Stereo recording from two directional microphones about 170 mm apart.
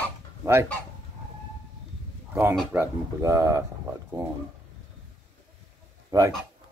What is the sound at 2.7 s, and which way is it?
Speech, 15° right (ahead or behind).